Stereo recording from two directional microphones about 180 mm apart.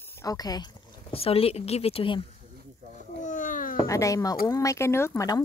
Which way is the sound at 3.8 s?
15° left (ahead or behind).